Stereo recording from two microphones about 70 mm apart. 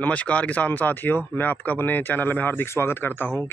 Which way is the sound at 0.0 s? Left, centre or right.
Centre.